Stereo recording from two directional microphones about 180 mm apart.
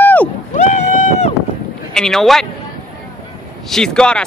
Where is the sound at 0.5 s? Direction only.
40° left (ahead or behind).